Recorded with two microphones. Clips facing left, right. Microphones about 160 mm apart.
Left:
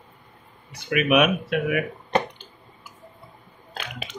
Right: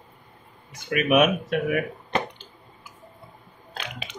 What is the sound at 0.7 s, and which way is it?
Speech, 45° right (ahead or behind).